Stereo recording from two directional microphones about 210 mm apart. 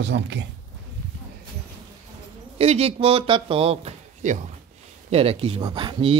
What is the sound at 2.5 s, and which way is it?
Speech, 30° right (ahead or behind).